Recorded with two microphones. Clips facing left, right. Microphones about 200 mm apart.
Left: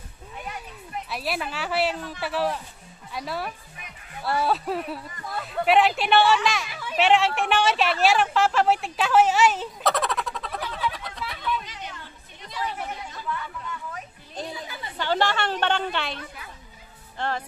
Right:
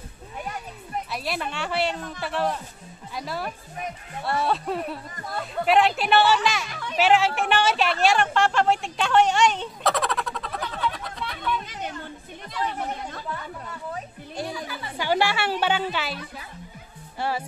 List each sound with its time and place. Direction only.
1.1 s a woman's voice: centre (ahead or behind)
3.8 s speech: 40° right (ahead or behind)
4.2 s a woman's voice: centre (ahead or behind)
11.6 s chatter: 50° right (ahead or behind)
13.3 s a sound: 35° right (ahead or behind)
14.6 s a sound: 10° right (ahead or behind)
17.2 s music: 10° right (ahead or behind)